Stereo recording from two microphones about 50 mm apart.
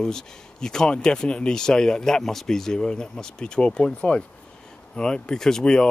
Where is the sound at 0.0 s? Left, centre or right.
Centre.